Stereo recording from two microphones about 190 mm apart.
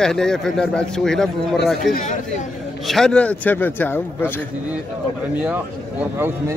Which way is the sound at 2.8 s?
5° left (ahead or behind).